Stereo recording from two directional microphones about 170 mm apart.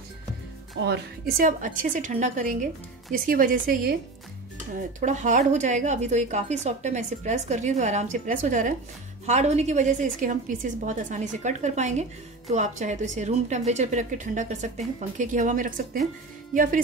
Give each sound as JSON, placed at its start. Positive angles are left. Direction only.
{"t": 0.7, "sound": "a woman's voice", "side_deg": -85}
{"t": 5.0, "sound": "a woman's voice", "side_deg": -45}